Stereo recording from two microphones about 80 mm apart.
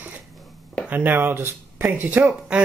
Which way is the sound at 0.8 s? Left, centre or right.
Right.